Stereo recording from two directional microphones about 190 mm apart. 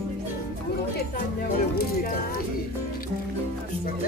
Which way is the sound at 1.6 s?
45° left (ahead or behind).